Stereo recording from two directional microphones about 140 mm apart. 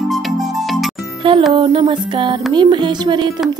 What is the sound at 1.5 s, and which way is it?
Music, 35° right (ahead or behind).